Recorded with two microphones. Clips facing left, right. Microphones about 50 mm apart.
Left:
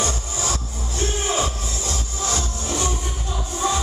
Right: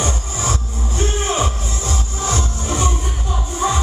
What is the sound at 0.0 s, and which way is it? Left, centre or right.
Music, right.